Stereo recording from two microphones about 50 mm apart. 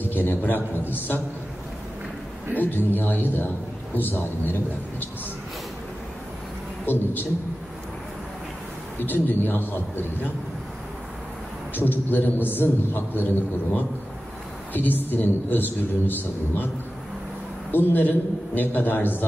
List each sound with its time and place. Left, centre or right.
0.0 s a man's voice: left
2.6 s a man's voice: left
8.9 s a man's voice: left
11.7 s a man's voice: left
17.6 s a man's voice: left